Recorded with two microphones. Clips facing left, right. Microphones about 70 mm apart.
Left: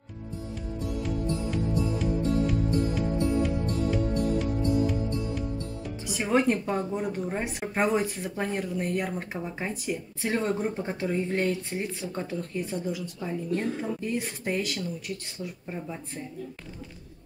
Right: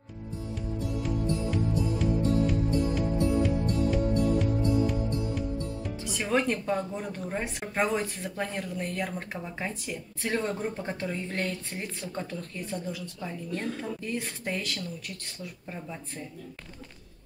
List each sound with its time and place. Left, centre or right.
4.4 s music: centre
6.1 s speech: centre